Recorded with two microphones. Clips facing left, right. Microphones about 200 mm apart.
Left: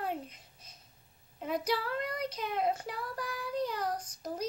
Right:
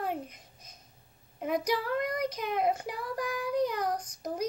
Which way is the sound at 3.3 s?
50° right (ahead or behind).